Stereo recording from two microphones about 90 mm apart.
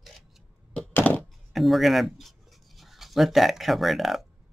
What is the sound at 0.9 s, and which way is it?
Thunk, 20° left (ahead or behind).